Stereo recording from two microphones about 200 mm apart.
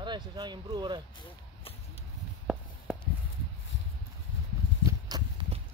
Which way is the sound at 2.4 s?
Centre (ahead or behind).